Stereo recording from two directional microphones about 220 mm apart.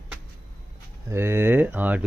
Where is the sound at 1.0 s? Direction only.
10° right (ahead or behind).